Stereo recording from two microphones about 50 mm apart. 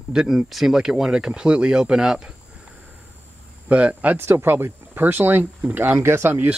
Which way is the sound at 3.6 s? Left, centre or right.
Right.